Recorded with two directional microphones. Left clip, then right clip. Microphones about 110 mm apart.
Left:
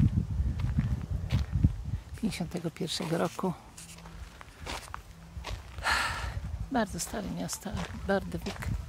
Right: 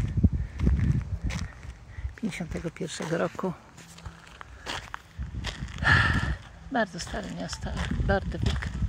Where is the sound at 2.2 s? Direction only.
15° left (ahead or behind).